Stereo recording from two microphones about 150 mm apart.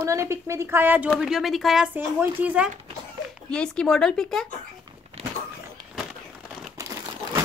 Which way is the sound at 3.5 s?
5° left (ahead or behind).